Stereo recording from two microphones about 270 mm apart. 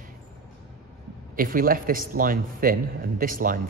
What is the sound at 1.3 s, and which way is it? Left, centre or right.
Speech, right.